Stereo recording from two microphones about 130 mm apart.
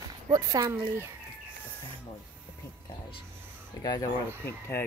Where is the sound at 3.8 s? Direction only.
30° left (ahead or behind).